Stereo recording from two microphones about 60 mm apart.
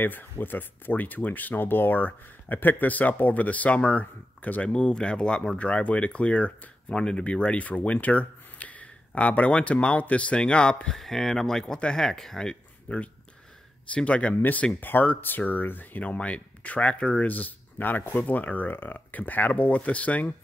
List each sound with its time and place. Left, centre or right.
0.0 s speech: left
4.6 s speech: centre
12.8 s speech: left